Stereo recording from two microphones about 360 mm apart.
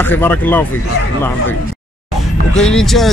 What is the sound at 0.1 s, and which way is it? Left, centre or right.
Speech, centre.